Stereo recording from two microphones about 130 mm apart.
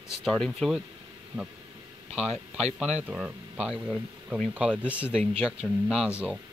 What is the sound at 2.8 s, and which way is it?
Speech, 5° right (ahead or behind).